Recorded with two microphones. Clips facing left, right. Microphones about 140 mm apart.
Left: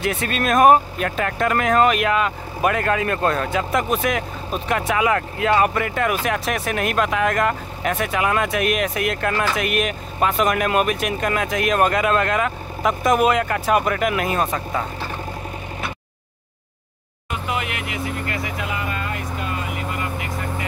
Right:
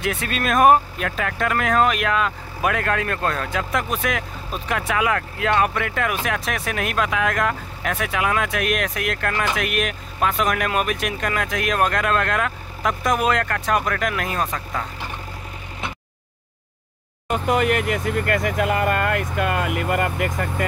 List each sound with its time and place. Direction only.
0.0 s speech: centre (ahead or behind)
17.3 s speech: 45° right (ahead or behind)